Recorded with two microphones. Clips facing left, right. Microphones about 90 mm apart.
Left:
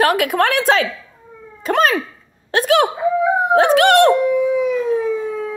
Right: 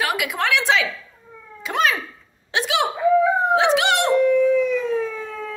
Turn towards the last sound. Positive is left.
turn(degrees=15)  # may be behind; listen again after turning